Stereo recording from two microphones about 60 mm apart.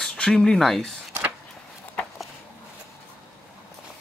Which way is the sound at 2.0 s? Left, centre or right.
Centre.